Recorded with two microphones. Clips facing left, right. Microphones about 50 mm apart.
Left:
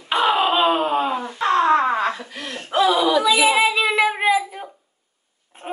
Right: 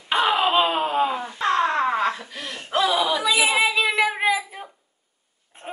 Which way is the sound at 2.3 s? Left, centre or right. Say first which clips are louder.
Left 2 dB; centre.